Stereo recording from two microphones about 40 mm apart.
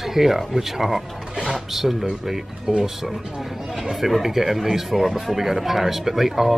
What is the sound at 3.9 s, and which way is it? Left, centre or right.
A man's voice, centre.